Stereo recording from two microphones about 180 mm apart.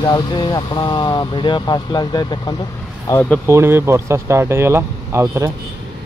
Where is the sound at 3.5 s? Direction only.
15° right (ahead or behind).